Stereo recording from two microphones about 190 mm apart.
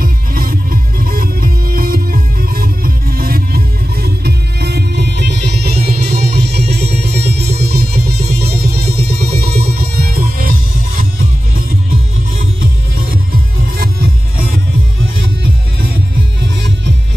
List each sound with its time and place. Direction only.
0.0 s music: 50° right (ahead or behind)